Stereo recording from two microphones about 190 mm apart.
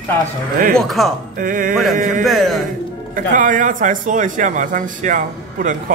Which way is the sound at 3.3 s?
45° right (ahead or behind).